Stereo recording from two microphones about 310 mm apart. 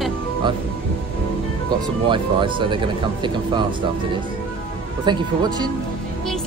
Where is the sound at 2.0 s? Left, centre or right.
Centre.